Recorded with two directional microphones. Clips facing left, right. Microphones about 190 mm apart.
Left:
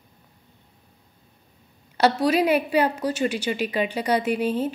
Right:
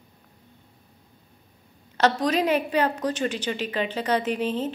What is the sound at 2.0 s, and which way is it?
A woman's voice, 10° left (ahead or behind).